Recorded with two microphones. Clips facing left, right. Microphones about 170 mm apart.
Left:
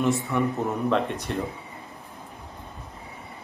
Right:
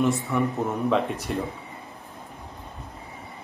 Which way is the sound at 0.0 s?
Centre (ahead or behind).